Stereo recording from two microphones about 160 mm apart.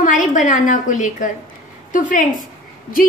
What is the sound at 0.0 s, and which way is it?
A woman's voice, 55° left (ahead or behind).